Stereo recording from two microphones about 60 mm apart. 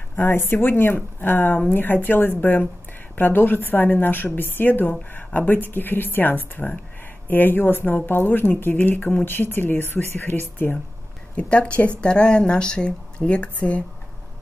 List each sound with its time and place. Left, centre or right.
0.1 s speech: left
11.3 s speech: left